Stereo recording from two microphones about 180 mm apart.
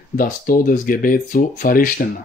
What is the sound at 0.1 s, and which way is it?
Speech, 50° left (ahead or behind).